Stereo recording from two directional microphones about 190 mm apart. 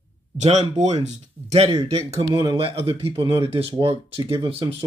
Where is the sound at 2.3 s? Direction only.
15° right (ahead or behind).